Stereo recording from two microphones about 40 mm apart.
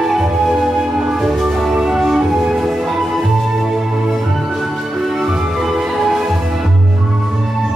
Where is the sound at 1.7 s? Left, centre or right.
Centre.